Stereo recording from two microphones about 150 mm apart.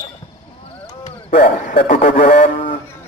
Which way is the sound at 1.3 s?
60° left (ahead or behind).